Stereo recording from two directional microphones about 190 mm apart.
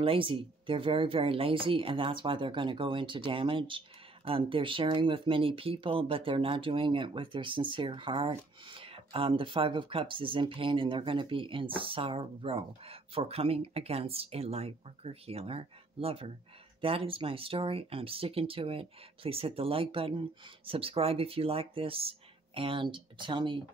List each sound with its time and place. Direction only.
0.0 s speech: 30° right (ahead or behind)